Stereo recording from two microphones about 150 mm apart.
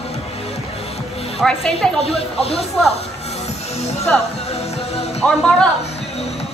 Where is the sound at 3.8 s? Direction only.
45° left (ahead or behind).